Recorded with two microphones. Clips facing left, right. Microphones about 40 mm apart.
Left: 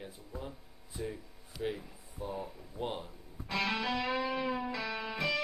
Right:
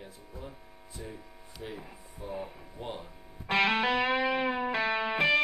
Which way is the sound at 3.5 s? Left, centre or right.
Right.